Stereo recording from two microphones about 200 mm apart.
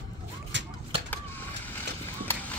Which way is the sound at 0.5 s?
65° right (ahead or behind).